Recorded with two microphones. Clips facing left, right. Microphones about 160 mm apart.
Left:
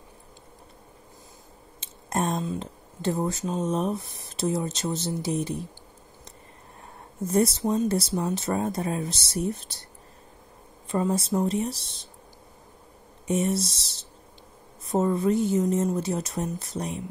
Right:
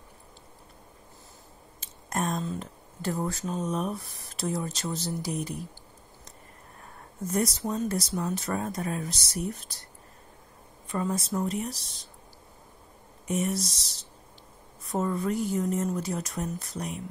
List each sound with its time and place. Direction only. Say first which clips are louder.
1.8 s a sound: left 3 dB; 30° left (ahead or behind)
2.4 s speech: left 3 dB; 25° left (ahead or behind)
7.2 s speech: left 5 dB; 30° left (ahead or behind)
10.9 s speech: left 5 dB; 30° left (ahead or behind)
13.3 s speech: left 4 dB; 25° left (ahead or behind)